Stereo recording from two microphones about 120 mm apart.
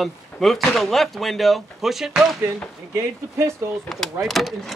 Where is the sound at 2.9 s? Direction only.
20° right (ahead or behind).